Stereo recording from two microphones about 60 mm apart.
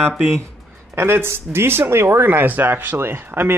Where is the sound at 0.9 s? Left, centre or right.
Right.